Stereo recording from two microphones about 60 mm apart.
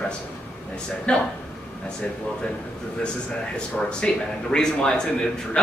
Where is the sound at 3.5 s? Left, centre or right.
Centre.